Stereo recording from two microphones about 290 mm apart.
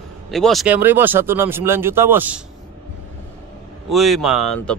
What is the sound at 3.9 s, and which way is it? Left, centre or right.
Speech, centre.